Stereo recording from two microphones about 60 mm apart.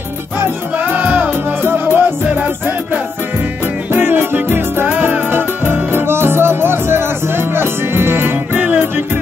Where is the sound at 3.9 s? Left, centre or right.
Right.